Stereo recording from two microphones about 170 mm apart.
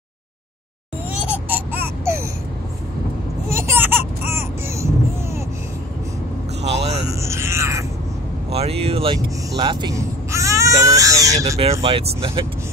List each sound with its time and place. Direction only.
1.5 s baby cry: 10° right (ahead or behind)
3.4 s vehicle: 15° right (ahead or behind)
6.6 s a sound: 40° right (ahead or behind)
7.2 s music: 15° right (ahead or behind)
8.5 s vehicle: 35° right (ahead or behind)
9.6 s baby cry: 25° right (ahead or behind)
11.8 s speech: 35° right (ahead or behind)